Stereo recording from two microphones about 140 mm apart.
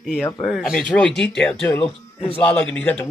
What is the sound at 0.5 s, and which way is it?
Speech, centre (ahead or behind).